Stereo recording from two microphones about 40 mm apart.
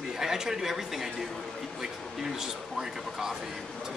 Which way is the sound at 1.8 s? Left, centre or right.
Centre.